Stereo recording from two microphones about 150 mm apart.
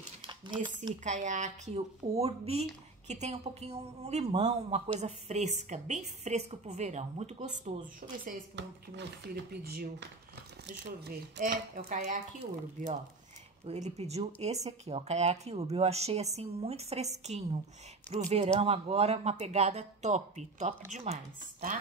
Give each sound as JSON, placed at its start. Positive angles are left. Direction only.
{"t": 0.3, "sound": "a sound", "side_deg": -30}
{"t": 1.0, "sound": "speech", "side_deg": -55}
{"t": 9.3, "sound": "speech", "side_deg": -90}
{"t": 11.1, "sound": "speech", "side_deg": -80}
{"t": 13.7, "sound": "speech", "side_deg": -45}